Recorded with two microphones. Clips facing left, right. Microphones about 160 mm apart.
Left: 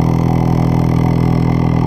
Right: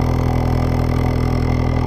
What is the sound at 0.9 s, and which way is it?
Music, 45° left (ahead or behind).